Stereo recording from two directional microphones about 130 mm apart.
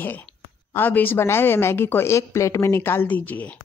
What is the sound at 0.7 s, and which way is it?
Speech, 15° left (ahead or behind).